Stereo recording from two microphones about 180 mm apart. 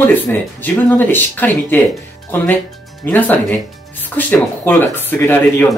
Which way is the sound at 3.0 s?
10° left (ahead or behind).